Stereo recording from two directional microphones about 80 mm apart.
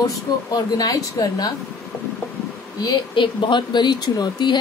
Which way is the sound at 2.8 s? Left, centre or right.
Left.